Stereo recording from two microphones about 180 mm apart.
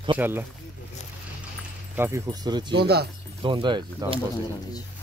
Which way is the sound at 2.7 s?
60° right (ahead or behind).